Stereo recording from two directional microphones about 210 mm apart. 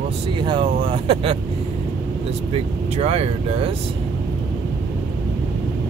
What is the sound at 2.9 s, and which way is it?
Speech, 30° right (ahead or behind).